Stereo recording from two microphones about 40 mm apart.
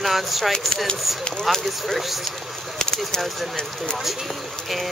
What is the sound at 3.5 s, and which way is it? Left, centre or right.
Speech, centre.